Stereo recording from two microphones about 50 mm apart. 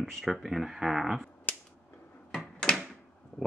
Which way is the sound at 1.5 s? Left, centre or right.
Left.